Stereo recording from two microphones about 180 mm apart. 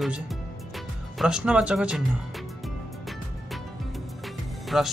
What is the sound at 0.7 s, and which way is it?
Speech, 5° right (ahead or behind).